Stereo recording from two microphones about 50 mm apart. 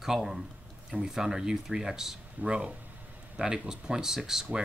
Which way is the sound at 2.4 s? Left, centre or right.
Right.